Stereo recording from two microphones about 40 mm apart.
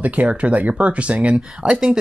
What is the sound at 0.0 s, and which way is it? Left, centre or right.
Speech, right.